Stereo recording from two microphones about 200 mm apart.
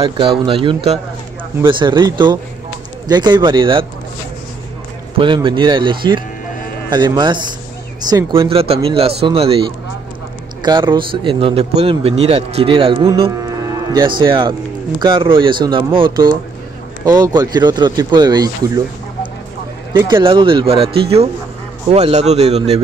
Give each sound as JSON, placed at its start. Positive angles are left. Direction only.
{"t": 0.0, "sound": "speech", "side_deg": -25}
{"t": 5.1, "sound": "speech", "side_deg": -25}
{"t": 20.1, "sound": "a man's voice", "side_deg": -25}